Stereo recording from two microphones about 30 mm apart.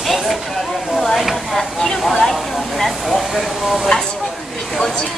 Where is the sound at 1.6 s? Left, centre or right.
Centre.